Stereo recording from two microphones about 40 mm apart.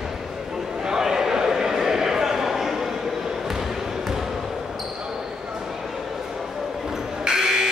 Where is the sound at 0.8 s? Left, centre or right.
Centre.